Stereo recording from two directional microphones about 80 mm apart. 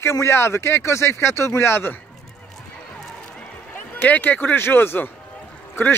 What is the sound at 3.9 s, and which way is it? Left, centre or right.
Speech, left.